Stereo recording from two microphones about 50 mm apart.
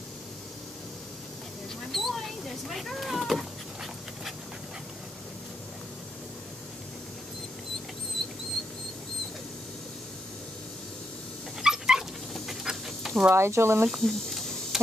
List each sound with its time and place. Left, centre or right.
1.9 s mouse: centre
8.2 s a sound: centre
11.6 s dog: centre
13.3 s speech: right
13.8 s cricket: centre